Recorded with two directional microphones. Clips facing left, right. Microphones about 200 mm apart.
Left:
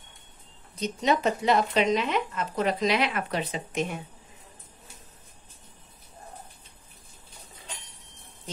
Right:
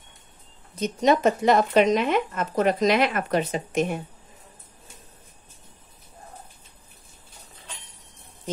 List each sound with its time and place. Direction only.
0.7 s speech: 50° right (ahead or behind)